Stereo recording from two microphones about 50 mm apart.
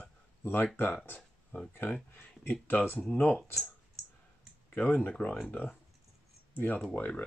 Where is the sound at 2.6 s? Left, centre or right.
Left.